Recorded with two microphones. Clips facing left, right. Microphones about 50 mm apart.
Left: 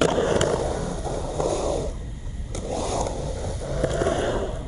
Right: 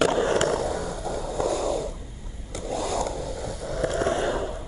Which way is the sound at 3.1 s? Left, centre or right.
Left.